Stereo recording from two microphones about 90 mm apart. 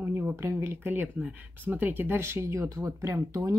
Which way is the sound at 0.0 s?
20° right (ahead or behind).